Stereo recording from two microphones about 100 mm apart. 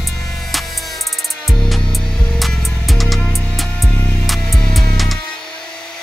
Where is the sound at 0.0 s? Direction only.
Centre (ahead or behind); by 4.1 s 15° left (ahead or behind).